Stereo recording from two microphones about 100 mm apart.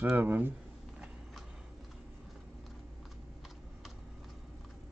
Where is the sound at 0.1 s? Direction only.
20° right (ahead or behind).